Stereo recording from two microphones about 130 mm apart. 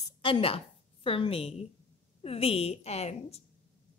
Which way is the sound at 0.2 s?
45° left (ahead or behind).